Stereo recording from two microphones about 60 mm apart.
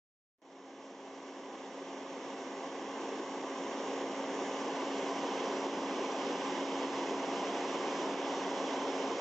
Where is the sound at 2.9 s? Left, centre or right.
Centre.